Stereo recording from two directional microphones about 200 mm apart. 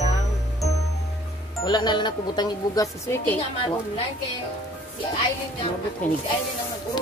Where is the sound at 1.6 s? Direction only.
20° left (ahead or behind).